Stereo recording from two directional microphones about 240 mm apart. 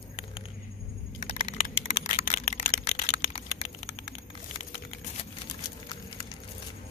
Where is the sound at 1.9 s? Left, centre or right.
Left.